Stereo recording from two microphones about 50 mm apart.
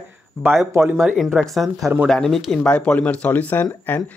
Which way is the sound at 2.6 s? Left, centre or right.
Left.